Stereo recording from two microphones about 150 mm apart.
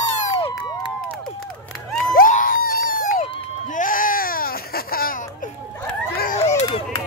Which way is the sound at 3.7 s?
65° left (ahead or behind).